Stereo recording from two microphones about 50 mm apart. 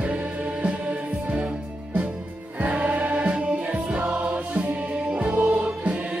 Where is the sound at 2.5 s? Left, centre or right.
Right.